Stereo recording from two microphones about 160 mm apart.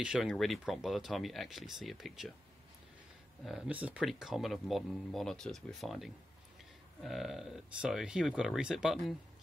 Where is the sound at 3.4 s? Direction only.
5° right (ahead or behind).